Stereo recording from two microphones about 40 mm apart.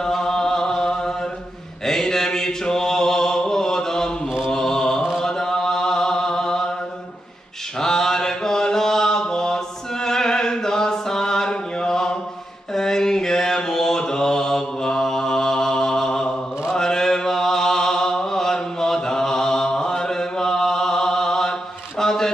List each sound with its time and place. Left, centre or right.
0.0 s chant: centre
1.9 s mantra: centre
7.8 s mantra: centre